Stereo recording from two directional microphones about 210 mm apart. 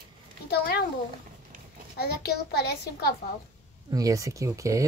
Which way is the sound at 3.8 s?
15° right (ahead or behind).